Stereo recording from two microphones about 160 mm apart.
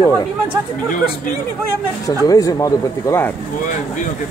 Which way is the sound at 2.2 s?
20° left (ahead or behind).